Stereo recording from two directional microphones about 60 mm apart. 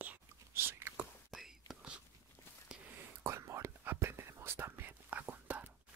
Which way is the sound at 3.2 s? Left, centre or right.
Right.